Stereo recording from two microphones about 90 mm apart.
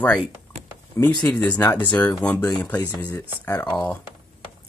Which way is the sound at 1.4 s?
15° left (ahead or behind).